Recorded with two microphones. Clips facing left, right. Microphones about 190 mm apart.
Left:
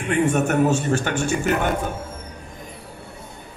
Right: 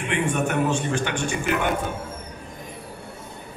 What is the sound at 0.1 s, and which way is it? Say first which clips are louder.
A man's voice: left 5 dB; 40° left (ahead or behind).